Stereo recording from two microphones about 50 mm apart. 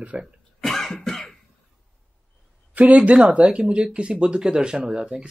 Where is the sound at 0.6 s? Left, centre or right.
Centre.